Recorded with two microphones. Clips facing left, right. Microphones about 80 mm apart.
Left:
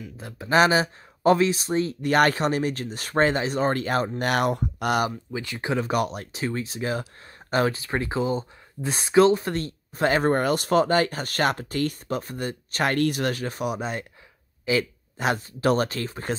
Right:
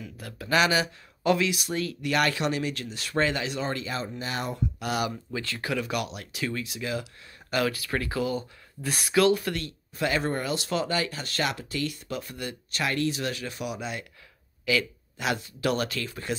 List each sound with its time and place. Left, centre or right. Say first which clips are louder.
0.0 s speech: left 2 dB; left
0.6 s speech: left 5 dB; left
4.2 s speech: left 8 dB; left
5.3 s speech: left 3 dB; centre
5.8 s speech: left 6 dB; left